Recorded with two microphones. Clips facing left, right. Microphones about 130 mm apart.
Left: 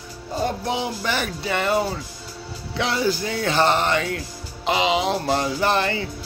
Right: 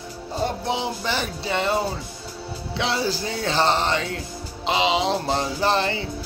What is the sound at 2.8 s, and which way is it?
Speech, 30° right (ahead or behind).